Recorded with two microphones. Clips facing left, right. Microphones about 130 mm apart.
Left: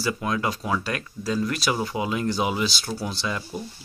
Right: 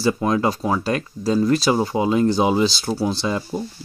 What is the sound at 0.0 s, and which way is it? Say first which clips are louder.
Speech: right 7 dB; 30° right (ahead or behind).